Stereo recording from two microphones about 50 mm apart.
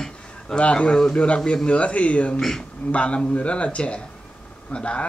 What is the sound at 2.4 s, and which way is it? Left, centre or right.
Speech, centre.